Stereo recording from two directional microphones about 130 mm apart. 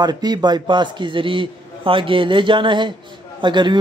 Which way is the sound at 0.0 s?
30° right (ahead or behind).